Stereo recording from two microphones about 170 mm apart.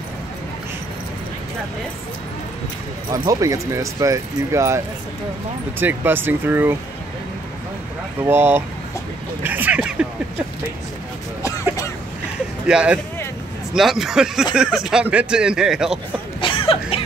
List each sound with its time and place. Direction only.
3.1 s speech: 20° right (ahead or behind)
8.2 s speech: 10° right (ahead or behind)
12.6 s speech: 5° right (ahead or behind)
16.3 s cough: 30° left (ahead or behind)